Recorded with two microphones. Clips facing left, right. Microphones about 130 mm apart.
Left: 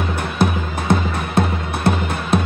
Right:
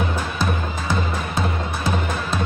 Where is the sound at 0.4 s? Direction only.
60° left (ahead or behind).